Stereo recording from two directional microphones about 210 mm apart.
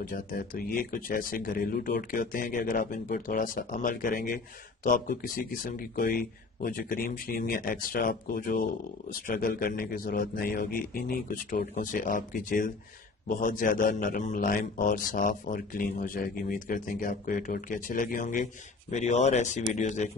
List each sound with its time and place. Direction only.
0.0 s a man's voice: 40° left (ahead or behind)